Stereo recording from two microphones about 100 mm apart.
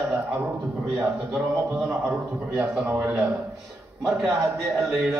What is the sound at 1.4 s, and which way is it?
Speech, 25° right (ahead or behind).